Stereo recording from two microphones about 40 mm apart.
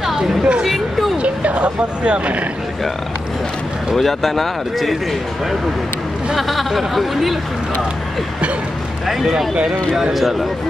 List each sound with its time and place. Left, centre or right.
0.0 s a sound: centre
0.4 s speech: right
1.2 s speech: right
3.9 s speech: centre
6.3 s speech: centre
9.0 s speech: centre